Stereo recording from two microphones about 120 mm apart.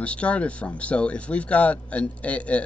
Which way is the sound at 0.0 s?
10° left (ahead or behind).